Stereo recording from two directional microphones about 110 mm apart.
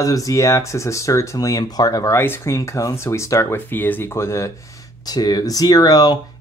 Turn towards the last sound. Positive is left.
turn(degrees=35)  # may be behind; listen again after turning